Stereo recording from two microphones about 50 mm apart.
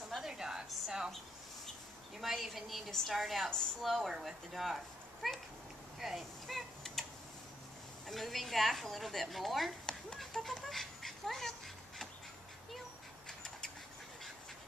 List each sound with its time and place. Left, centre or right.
0.1 s a sound: centre
2.1 s a woman's voice: centre
5.9 s typing: centre
8.1 s a woman's voice: centre
10.3 s speech: centre
13.3 s a sound: centre